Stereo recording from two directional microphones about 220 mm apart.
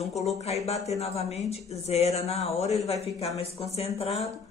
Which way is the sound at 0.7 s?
30° left (ahead or behind).